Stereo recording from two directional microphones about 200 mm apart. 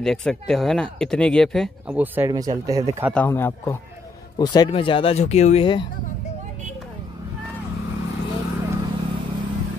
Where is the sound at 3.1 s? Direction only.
10° left (ahead or behind); by 5.9 s 25° left (ahead or behind).